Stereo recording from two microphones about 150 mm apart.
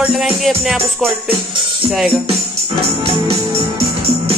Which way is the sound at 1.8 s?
Centre (ahead or behind).